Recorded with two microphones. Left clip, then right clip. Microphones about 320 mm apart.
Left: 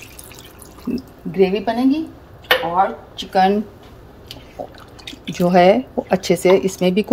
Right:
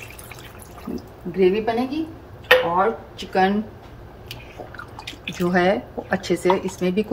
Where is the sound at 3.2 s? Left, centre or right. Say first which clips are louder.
Left 6 dB; left.